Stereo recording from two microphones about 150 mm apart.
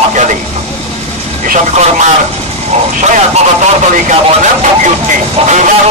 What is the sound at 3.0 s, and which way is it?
Speech, 50° right (ahead or behind).